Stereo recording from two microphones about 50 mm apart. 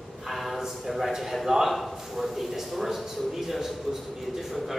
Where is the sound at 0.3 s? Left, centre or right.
Centre.